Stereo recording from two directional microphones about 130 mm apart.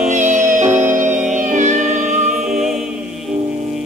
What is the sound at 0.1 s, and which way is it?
Music, 70° right (ahead or behind).